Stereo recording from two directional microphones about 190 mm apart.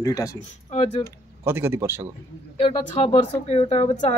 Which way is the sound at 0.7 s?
35° left (ahead or behind).